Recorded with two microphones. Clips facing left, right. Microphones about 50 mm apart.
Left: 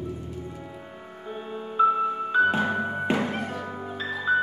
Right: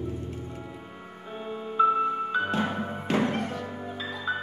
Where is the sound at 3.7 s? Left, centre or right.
Centre.